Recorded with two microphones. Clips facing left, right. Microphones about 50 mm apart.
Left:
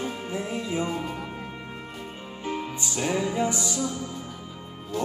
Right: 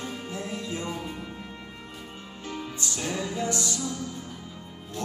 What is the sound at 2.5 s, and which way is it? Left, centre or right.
Music, centre.